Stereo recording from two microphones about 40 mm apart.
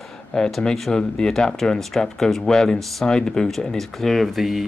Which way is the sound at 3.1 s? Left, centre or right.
Centre.